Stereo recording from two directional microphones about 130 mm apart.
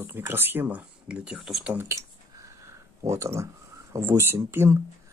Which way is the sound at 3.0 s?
20° right (ahead or behind).